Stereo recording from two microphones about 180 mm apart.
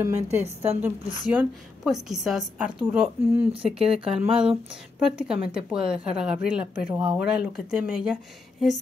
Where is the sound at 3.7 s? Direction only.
30° right (ahead or behind).